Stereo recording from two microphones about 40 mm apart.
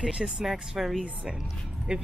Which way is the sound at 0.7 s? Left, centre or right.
Centre.